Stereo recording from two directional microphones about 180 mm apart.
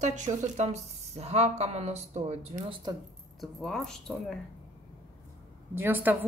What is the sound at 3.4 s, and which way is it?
Speech, centre (ahead or behind).